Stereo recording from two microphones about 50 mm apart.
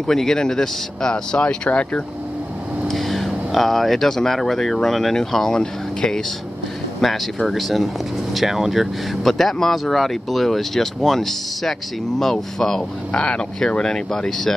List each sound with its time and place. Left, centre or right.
0.0 s speech: centre
2.9 s vehicle: centre
3.5 s speech: centre